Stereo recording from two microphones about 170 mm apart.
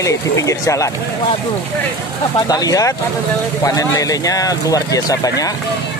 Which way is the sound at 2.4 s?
20° left (ahead or behind).